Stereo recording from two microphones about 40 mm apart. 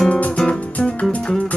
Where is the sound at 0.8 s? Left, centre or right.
Left.